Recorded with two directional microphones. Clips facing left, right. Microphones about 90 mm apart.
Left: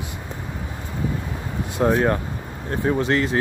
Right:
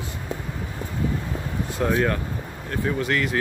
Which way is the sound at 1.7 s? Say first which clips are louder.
Left 4 dB; 25° left (ahead or behind).